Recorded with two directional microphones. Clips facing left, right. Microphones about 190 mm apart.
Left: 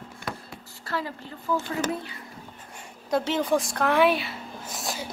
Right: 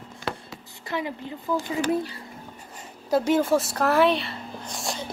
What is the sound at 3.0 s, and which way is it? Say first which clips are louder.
A woman's voice: right 4 dB; 10° right (ahead or behind).